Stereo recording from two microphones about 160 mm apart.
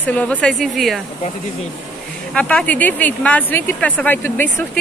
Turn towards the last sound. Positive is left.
turn(degrees=10)  # may be behind; listen again after turning